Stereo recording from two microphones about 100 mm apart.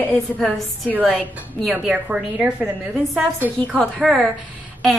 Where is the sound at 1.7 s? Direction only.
15° right (ahead or behind).